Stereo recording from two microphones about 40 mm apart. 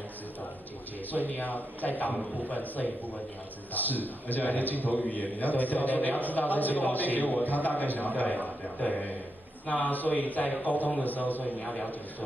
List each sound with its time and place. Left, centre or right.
1.3 s a man's voice: left
11.6 s a man's voice: left